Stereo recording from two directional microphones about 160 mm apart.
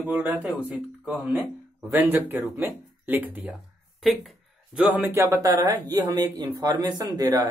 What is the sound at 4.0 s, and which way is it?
Speech, centre (ahead or behind).